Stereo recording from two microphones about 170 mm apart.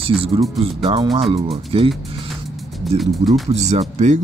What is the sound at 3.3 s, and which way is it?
Speech, 40° right (ahead or behind).